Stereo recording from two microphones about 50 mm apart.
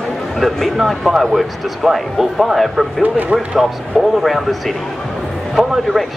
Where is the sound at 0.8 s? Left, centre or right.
Centre.